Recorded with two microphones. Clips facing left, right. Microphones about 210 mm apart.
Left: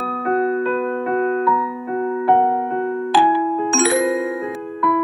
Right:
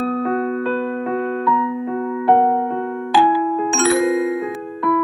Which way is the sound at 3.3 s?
20° left (ahead or behind).